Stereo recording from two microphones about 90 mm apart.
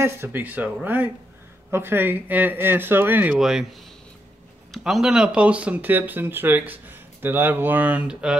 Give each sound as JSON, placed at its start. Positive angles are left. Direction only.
{"t": 0.0, "sound": "speech", "side_deg": -25}
{"t": 3.3, "sound": "speech", "side_deg": -5}
{"t": 4.7, "sound": "speech", "side_deg": -5}